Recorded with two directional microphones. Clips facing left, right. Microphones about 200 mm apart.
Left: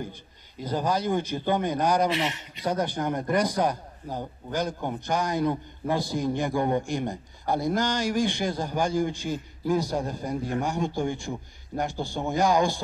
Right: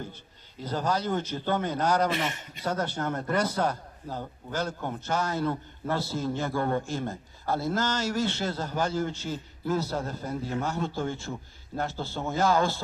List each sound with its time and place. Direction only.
0.6 s a man's voice: 10° left (ahead or behind)
2.0 s speech: 50° right (ahead or behind)
2.6 s a man's voice: 10° left (ahead or behind)